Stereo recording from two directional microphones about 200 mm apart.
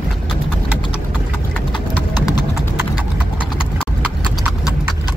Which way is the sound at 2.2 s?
20° left (ahead or behind).